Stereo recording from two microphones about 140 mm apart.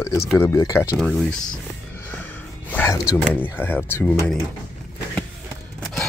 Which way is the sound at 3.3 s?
15° left (ahead or behind).